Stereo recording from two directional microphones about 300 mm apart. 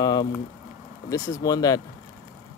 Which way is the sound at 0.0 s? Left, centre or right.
Centre.